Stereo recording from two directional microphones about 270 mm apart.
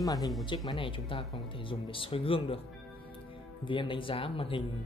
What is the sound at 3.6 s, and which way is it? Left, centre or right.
Speech, centre.